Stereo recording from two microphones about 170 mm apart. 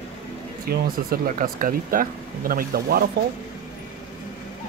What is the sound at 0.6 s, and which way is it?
Speech, 60° right (ahead or behind).